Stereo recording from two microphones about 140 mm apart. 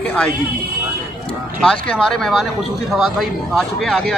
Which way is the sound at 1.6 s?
5° left (ahead or behind).